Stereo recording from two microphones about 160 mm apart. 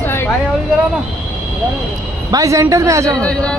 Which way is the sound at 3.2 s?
5° left (ahead or behind).